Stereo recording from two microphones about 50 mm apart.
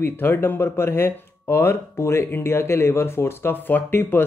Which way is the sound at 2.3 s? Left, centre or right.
Left.